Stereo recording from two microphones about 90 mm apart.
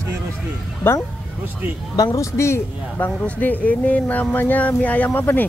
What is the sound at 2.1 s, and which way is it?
Speech, 30° left (ahead or behind).